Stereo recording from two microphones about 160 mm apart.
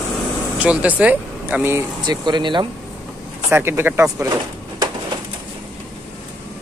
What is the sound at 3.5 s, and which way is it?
Speech, 15° right (ahead or behind).